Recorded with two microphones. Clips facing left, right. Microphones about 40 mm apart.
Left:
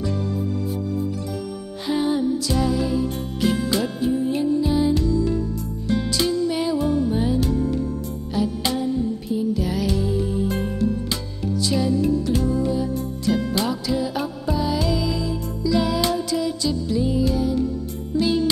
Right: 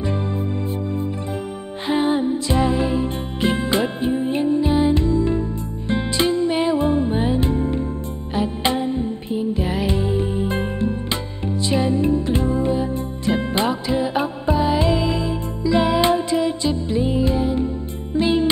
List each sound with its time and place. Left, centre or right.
0.0 s music: right
1.9 s music: right